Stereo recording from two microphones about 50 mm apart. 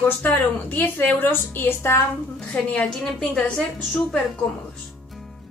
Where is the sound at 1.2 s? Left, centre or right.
Left.